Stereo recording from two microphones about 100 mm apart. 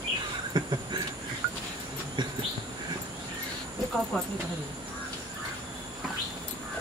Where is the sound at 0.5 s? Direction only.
45° right (ahead or behind).